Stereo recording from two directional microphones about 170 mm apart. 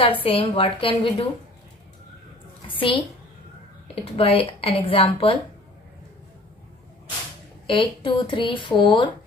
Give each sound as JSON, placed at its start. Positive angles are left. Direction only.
{"t": 0.0, "sound": "speech", "side_deg": 35}
{"t": 2.7, "sound": "speech", "side_deg": 30}
{"t": 7.6, "sound": "speech", "side_deg": 30}